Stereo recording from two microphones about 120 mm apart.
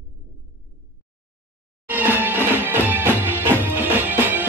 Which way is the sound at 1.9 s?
15° right (ahead or behind).